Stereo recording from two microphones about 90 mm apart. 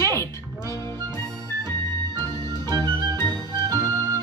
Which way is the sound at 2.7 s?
50° right (ahead or behind).